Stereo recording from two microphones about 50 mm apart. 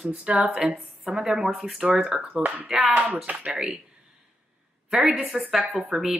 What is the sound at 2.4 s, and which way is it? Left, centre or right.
Speech, right.